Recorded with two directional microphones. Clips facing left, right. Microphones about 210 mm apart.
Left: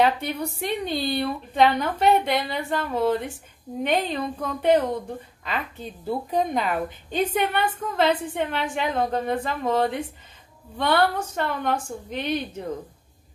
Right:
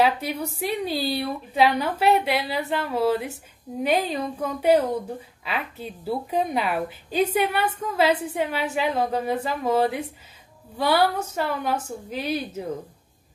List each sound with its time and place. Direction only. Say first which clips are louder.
0.0 s a woman's voice: even; 5° right (ahead or behind)